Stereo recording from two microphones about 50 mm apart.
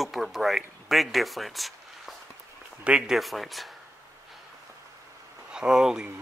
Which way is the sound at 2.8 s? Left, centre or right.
Right.